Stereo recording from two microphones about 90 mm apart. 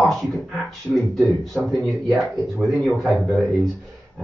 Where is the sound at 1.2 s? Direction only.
5° left (ahead or behind).